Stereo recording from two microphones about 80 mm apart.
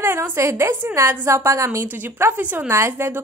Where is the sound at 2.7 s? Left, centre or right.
Right.